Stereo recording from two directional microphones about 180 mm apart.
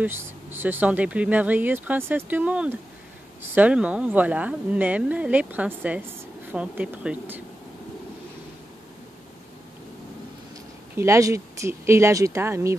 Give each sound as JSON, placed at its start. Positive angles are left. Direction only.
{"t": 0.0, "sound": "speech", "side_deg": -10}
{"t": 11.0, "sound": "speech", "side_deg": -15}